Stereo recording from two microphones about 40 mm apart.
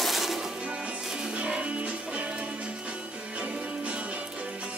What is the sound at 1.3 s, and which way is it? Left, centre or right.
Music, right.